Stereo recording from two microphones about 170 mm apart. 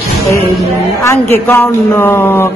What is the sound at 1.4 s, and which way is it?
A woman's voice, 10° left (ahead or behind).